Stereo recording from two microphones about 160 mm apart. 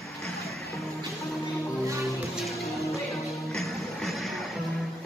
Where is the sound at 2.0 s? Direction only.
Centre (ahead or behind).